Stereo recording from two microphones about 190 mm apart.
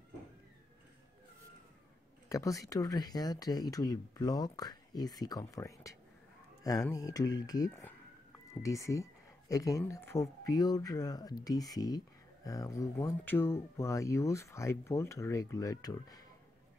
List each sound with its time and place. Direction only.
2.2 s speech: 15° left (ahead or behind)